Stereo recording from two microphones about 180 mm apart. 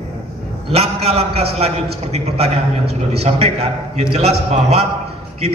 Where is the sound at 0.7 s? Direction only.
35° right (ahead or behind).